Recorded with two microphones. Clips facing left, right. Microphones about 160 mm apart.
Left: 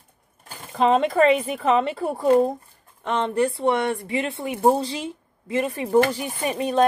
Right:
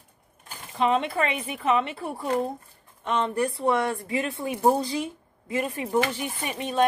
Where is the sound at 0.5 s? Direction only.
40° left (ahead or behind).